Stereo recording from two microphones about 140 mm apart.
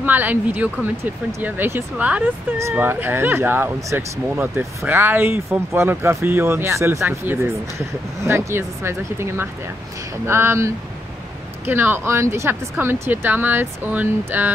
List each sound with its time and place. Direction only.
0.0 s speech: 10° right (ahead or behind)